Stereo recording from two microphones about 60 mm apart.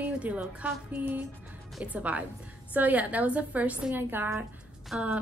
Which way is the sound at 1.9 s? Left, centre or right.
Right.